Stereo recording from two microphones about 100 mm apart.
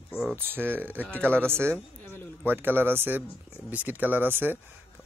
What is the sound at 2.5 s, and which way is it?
Speech, 20° right (ahead or behind).